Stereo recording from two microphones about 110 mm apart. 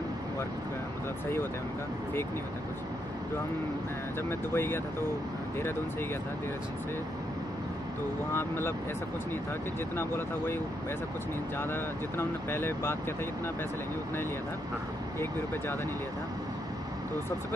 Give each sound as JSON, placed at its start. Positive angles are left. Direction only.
{"t": 4.3, "sound": "speech", "side_deg": 20}
{"t": 8.3, "sound": "speech", "side_deg": 25}
{"t": 9.9, "sound": "speech", "side_deg": 20}